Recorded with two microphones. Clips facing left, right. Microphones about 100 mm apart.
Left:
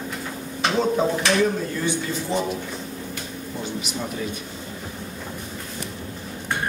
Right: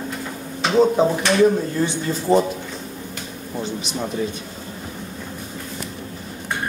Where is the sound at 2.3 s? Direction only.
45° right (ahead or behind).